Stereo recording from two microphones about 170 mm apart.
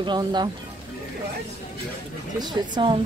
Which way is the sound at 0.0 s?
25° right (ahead or behind).